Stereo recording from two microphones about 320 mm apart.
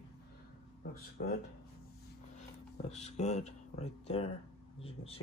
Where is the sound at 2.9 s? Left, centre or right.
Centre.